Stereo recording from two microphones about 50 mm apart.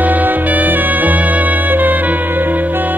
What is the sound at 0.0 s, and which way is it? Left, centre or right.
Music, right.